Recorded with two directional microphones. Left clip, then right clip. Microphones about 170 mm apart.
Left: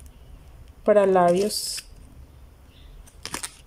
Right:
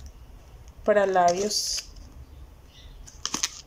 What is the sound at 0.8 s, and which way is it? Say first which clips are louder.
Speech: left 3 dB; 15° left (ahead or behind).